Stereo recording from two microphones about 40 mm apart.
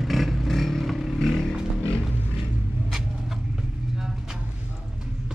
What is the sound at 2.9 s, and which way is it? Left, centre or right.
Rodents, centre.